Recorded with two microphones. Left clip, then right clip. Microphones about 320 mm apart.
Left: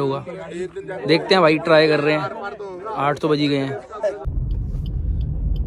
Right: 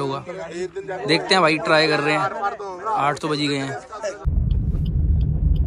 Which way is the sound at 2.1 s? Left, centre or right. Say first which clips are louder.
Right 3 dB; right.